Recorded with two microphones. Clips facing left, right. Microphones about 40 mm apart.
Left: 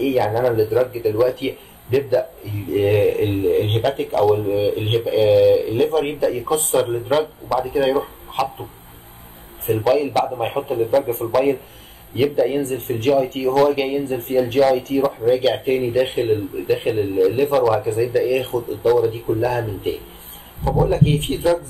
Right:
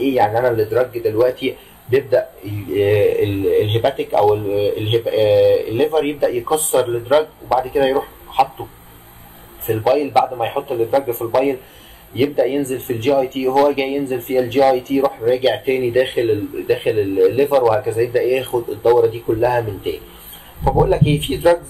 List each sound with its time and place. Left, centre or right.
0.2 s speech: centre
0.5 s speech: centre
9.7 s speech: centre
12.2 s speech: centre
15.8 s speech: right
16.1 s speech: centre
20.8 s speech: centre